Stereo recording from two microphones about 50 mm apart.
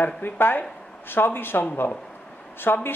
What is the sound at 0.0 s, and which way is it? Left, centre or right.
Speech, left.